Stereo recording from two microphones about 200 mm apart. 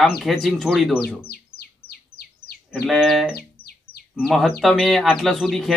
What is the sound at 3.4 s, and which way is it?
Music, 50° left (ahead or behind).